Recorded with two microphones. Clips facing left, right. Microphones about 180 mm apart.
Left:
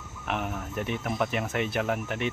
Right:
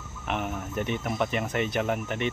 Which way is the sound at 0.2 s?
Centre (ahead or behind).